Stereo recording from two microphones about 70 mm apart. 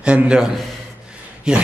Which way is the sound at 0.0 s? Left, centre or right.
Centre.